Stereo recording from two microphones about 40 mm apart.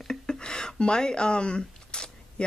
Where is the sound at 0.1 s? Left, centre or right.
Centre.